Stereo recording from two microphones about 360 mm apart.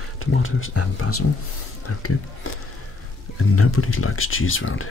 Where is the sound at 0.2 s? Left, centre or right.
Left.